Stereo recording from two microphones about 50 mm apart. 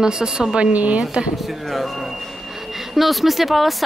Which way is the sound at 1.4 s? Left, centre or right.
Centre.